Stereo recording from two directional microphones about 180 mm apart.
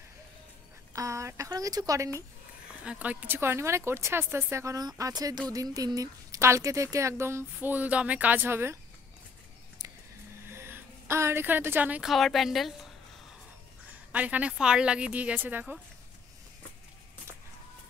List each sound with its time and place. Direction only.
0.9 s a sound: 15° right (ahead or behind)
2.8 s speech: 5° right (ahead or behind)
10.5 s a woman's voice: 15° right (ahead or behind)
14.1 s speech: 10° right (ahead or behind)